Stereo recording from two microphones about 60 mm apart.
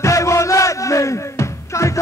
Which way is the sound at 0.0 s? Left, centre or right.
Left.